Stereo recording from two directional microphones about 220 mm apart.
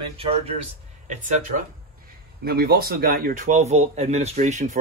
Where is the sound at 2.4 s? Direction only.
45° right (ahead or behind).